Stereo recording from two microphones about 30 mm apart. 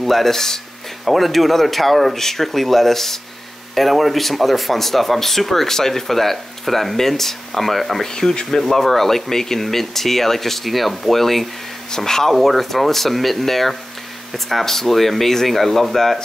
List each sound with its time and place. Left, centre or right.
0.0 s speech: centre
1.0 s speech: centre
8.0 s speech: centre